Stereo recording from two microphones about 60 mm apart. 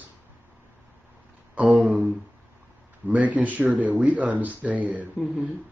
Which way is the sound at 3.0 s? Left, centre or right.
Right.